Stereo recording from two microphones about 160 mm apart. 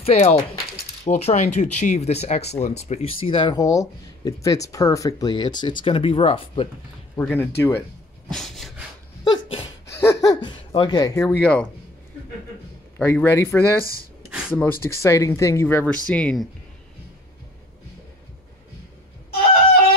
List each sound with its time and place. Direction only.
0.0 s speech: 40° left (ahead or behind)
7.2 s speech: 15° left (ahead or behind)
8.3 s a sound: centre (ahead or behind)
9.2 s sneeze: 30° left (ahead or behind)
9.8 s a sound: 15° left (ahead or behind)
13.0 s speech: 15° left (ahead or behind)